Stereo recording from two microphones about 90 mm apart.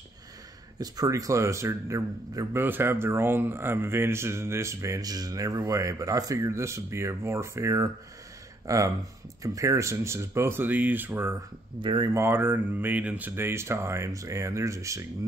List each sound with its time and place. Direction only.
0.7 s speech: 40° right (ahead or behind)
2.5 s speech: 25° right (ahead or behind)
11.8 s speech: 65° right (ahead or behind)
12.1 s speech: 30° right (ahead or behind)
13.4 s speech: 30° right (ahead or behind)